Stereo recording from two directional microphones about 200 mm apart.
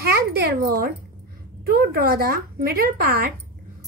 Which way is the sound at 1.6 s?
50° right (ahead or behind).